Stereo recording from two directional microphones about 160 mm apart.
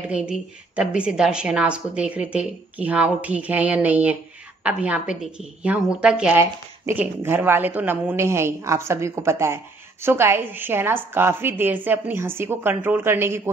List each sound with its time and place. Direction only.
0.1 s a woman's voice: 5° right (ahead or behind)